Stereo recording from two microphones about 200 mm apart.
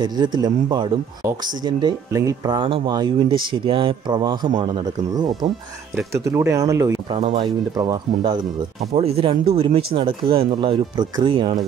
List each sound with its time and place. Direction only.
0.0 s speech: 20° right (ahead or behind)
7.2 s speech: 30° right (ahead or behind)